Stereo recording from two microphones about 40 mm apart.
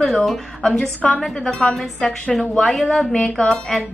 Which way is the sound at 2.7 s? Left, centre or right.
Centre.